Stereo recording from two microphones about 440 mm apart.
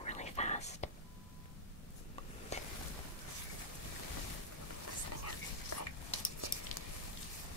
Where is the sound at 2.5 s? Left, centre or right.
Centre.